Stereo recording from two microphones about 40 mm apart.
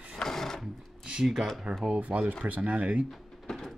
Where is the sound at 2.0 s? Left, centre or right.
Right.